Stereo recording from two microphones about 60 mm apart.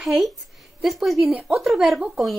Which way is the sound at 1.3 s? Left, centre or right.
Right.